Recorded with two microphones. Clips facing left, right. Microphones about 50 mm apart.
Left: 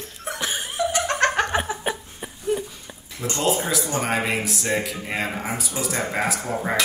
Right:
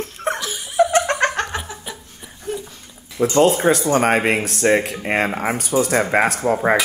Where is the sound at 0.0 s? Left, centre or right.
Right.